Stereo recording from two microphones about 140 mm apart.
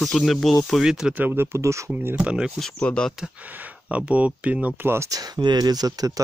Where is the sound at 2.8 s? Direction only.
5° left (ahead or behind).